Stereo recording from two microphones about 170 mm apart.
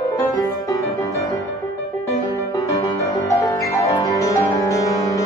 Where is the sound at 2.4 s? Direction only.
20° left (ahead or behind).